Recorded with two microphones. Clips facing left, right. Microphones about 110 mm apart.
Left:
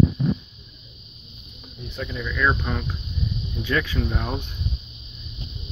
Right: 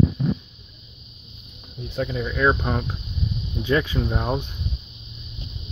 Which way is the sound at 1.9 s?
40° right (ahead or behind).